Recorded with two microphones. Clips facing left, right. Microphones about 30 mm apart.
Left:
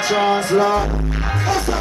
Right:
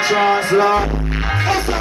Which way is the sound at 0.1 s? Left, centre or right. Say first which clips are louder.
Right 1 dB; centre.